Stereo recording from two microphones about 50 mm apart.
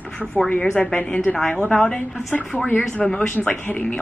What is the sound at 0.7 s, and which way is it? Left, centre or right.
Speech, left.